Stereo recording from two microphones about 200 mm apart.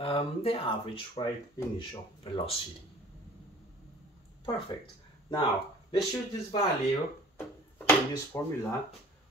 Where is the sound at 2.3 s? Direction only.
30° left (ahead or behind).